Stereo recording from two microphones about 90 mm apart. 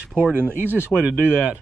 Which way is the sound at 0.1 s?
20° right (ahead or behind).